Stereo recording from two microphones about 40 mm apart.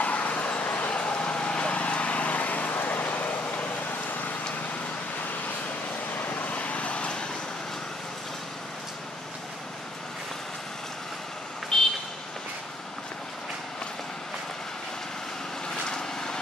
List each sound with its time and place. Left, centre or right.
0.0 s vehicle: left
0.9 s vehicle: left
6.1 s vehicle: left
6.4 s vehicle: left
11.7 s vehicle: centre
15.9 s vehicle: centre